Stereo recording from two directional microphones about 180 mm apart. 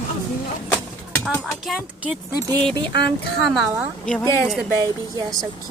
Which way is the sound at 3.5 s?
10° right (ahead or behind).